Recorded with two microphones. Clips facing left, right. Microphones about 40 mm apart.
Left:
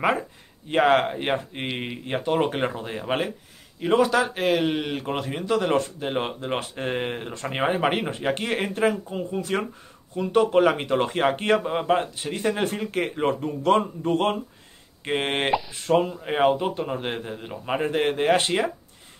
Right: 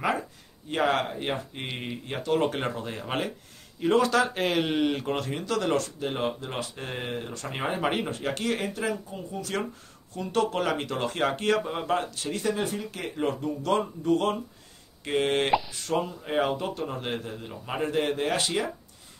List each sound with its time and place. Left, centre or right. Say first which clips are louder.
0.7 s speech: left 6 dB; left; by 5.1 s centre
5.1 s speech: left 4 dB; centre; by 18.7 s left